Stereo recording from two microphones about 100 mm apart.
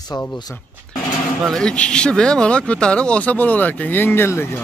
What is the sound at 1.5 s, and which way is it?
Speech, 10° left (ahead or behind).